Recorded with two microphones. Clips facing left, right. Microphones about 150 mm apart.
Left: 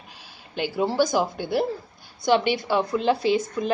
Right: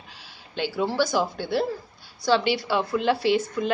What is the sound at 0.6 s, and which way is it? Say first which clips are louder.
A woman's voice: left 2 dB; 20° left (ahead or behind).